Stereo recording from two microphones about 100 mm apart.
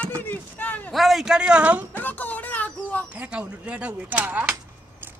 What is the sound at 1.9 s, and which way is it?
Speech, 20° left (ahead or behind).